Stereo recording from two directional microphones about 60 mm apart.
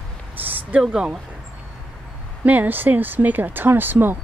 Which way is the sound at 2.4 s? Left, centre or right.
Right.